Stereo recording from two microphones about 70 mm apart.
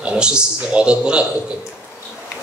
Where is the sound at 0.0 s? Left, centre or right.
Centre.